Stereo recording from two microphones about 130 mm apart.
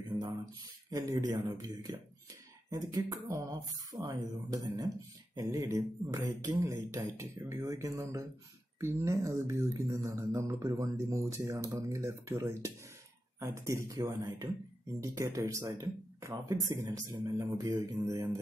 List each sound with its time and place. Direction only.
0.8 s speech: 30° right (ahead or behind)